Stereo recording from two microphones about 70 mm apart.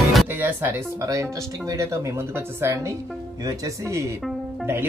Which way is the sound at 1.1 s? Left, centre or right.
Right.